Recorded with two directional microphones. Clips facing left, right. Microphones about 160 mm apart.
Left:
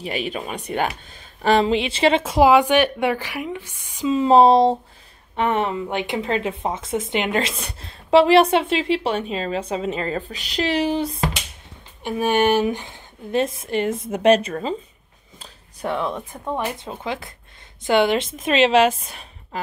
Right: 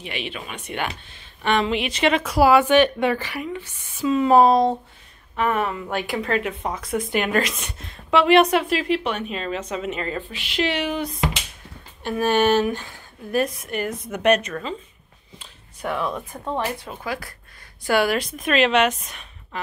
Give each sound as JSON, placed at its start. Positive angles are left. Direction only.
{"t": 0.0, "sound": "speech", "side_deg": 40}
{"t": 4.2, "sound": "speech", "side_deg": 25}
{"t": 12.0, "sound": "a woman's voice", "side_deg": 15}
{"t": 15.3, "sound": "a sound", "side_deg": 25}
{"t": 16.4, "sound": "speech", "side_deg": 15}